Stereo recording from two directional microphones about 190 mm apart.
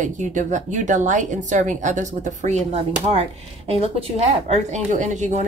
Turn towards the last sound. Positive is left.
turn(degrees=-40)  # may be behind; listen again after turning